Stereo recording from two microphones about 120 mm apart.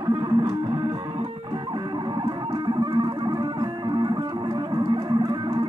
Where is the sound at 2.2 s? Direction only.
40° right (ahead or behind).